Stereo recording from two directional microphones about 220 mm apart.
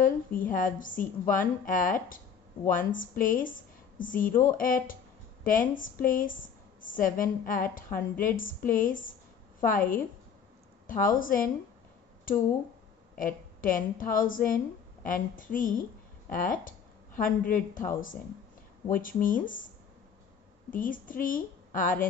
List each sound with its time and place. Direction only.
0.5 s a woman's voice: 35° left (ahead or behind)
13.2 s a woman's voice: 40° left (ahead or behind)
20.7 s a woman's voice: 40° left (ahead or behind)